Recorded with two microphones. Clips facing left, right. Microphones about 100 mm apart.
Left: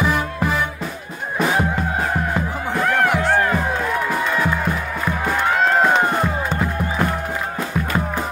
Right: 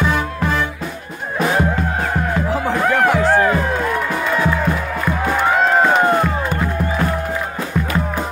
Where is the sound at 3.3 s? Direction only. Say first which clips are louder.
Right 3 dB; 5° right (ahead or behind).